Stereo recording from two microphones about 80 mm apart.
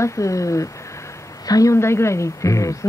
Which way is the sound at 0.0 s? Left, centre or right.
Left.